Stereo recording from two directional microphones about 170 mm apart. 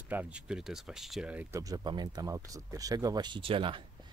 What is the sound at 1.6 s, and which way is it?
Speech, 20° right (ahead or behind).